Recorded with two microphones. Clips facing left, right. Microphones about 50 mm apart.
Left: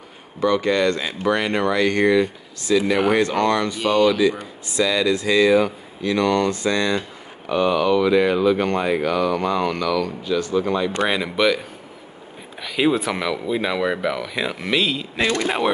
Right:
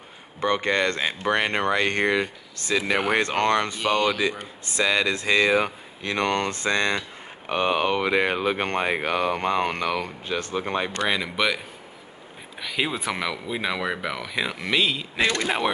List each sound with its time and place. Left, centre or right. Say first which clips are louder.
0.4 s speech: left 4 dB; right
11.1 s speech: left 5 dB; centre